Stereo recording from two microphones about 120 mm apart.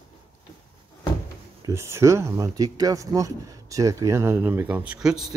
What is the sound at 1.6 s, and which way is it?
Speech, 25° right (ahead or behind).